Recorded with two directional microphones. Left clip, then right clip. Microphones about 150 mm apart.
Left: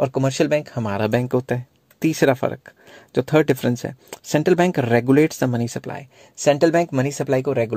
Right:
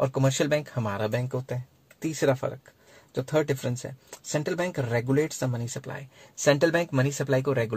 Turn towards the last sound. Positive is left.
turn(degrees=30)  # may be behind; listen again after turning